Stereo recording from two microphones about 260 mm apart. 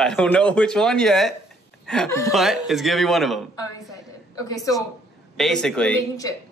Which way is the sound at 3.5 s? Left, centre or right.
Centre.